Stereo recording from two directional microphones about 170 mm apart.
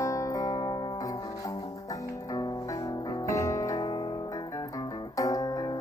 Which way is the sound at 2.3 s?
20° left (ahead or behind).